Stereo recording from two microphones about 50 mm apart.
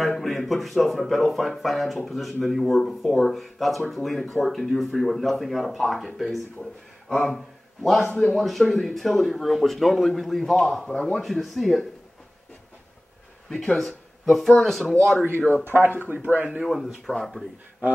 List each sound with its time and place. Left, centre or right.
0.2 s a man's voice: centre
13.7 s speech: centre
15.6 s a man's voice: right
16.6 s speech: centre